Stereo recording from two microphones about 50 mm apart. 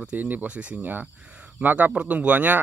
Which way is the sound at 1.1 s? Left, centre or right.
Right.